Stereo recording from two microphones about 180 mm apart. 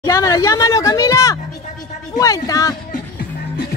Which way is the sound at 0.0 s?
20° left (ahead or behind).